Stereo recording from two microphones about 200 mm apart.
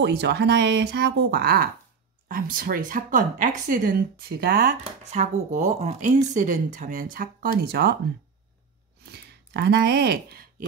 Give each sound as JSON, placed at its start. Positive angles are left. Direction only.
{"t": 0.0, "sound": "speech", "side_deg": -55}
{"t": 4.8, "sound": "speech", "side_deg": -35}
{"t": 9.0, "sound": "speech", "side_deg": -55}